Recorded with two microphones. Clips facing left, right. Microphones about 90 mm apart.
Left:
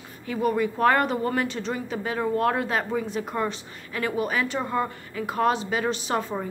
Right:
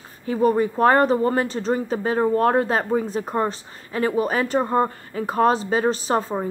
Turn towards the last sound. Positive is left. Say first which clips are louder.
# right 5 dB
turn(degrees=-35)  # may be behind; listen again after turning